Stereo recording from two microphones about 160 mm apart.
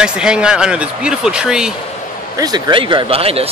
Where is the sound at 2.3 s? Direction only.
25° right (ahead or behind).